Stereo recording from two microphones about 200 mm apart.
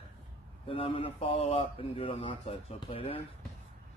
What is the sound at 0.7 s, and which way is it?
Speech, 25° left (ahead or behind).